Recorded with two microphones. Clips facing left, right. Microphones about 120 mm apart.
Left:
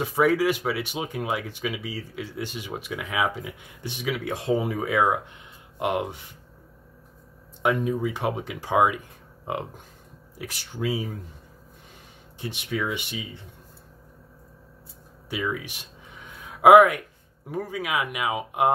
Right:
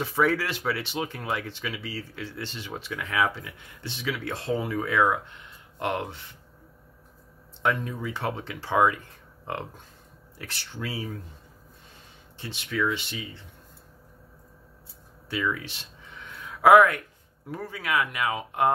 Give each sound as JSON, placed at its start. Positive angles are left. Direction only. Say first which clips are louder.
{"t": 0.0, "sound": "speech", "louder": "left 4 dB", "side_deg": 15}
{"t": 7.6, "sound": "speech", "louder": "left 4 dB", "side_deg": 15}
{"t": 10.3, "sound": "speech", "louder": "left 3 dB", "side_deg": 15}
{"t": 12.4, "sound": "speech", "louder": "even", "side_deg": 15}
{"t": 15.5, "sound": "a sound", "louder": "left 4 dB", "side_deg": 15}
{"t": 17.5, "sound": "speech", "louder": "left 2 dB", "side_deg": 20}